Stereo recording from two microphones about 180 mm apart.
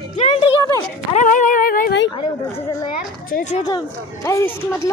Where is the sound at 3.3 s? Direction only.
45° left (ahead or behind).